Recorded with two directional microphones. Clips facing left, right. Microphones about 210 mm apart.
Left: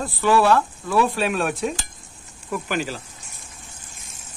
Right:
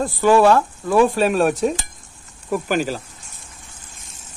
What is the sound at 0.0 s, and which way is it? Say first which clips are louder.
Speech: right 5 dB; 45° right (ahead or behind).